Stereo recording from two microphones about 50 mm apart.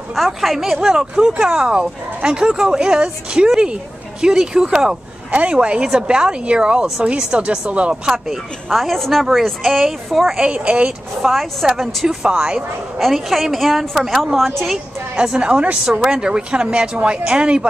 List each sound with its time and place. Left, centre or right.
0.1 s a woman's voice: centre
10.4 s a woman's voice: right
11.2 s a woman's voice: centre
13.0 s a woman's voice: centre
15.1 s a woman's voice: centre
15.8 s speech: centre